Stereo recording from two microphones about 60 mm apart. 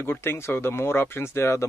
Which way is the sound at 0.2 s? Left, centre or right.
Left.